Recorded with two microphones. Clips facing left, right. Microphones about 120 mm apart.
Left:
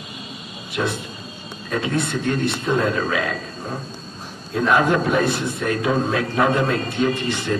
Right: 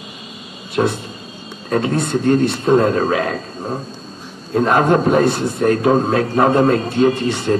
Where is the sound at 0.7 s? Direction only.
30° right (ahead or behind).